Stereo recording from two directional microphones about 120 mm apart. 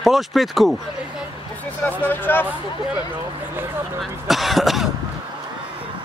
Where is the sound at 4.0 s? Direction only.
Centre (ahead or behind).